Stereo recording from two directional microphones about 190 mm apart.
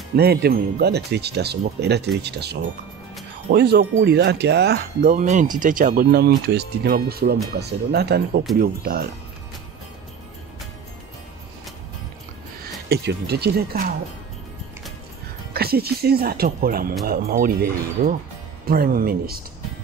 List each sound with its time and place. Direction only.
0.1 s speech: 55° right (ahead or behind)
5.1 s speech: 40° right (ahead or behind)
12.8 s speech: 60° right (ahead or behind)
15.5 s speech: 55° right (ahead or behind)